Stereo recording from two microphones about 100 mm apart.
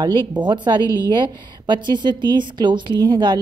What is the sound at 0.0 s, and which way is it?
A woman's voice, 50° right (ahead or behind).